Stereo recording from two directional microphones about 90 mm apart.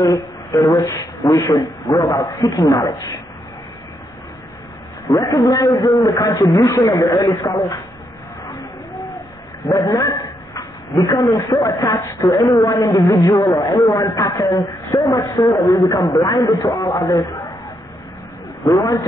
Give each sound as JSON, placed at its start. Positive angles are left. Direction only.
{"t": 0.0, "sound": "speech", "side_deg": 40}
{"t": 5.3, "sound": "speech", "side_deg": 40}
{"t": 8.5, "sound": "a sound", "side_deg": 45}
{"t": 9.7, "sound": "dog", "side_deg": 40}
{"t": 11.2, "sound": "speech", "side_deg": 35}
{"t": 18.6, "sound": "a man's voice", "side_deg": 40}